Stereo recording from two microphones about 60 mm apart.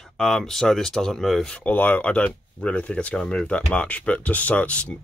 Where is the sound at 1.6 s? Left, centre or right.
Left.